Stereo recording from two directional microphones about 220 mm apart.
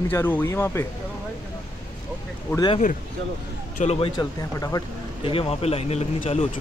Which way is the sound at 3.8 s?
30° left (ahead or behind).